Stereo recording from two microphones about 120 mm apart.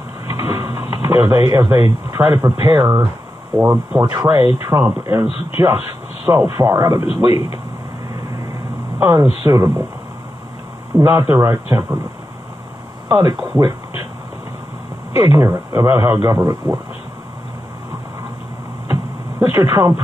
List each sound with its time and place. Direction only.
0.3 s speech: 25° right (ahead or behind)
9.0 s speech: 20° right (ahead or behind)
11.0 s speech: 20° right (ahead or behind)
13.1 s speech: 30° right (ahead or behind)
13.6 s a sound: 30° right (ahead or behind)
15.1 s speech: 25° right (ahead or behind)
19.4 s speech: 25° right (ahead or behind)